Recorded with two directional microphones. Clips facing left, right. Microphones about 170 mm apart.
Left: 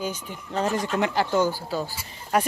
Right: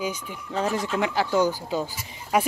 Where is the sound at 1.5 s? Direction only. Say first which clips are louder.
Right 1 dB; 20° right (ahead or behind).